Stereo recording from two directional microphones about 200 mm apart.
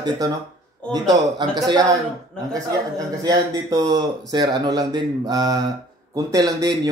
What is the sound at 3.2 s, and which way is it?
Speech, 20° right (ahead or behind).